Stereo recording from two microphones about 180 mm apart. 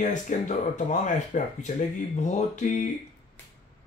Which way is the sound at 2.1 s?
40° left (ahead or behind).